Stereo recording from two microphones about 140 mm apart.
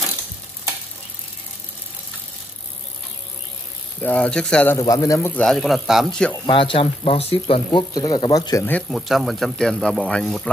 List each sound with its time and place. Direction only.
4.0 s speech: 10° left (ahead or behind)
4.7 s speech: 25° left (ahead or behind)
5.3 s a man's voice: 5° left (ahead or behind)
6.4 s speech: 35° left (ahead or behind)
7.9 s speech: 30° left (ahead or behind)
8.9 s a man's voice: centre (ahead or behind)